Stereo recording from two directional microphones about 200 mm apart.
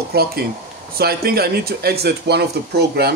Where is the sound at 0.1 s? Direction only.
50° right (ahead or behind).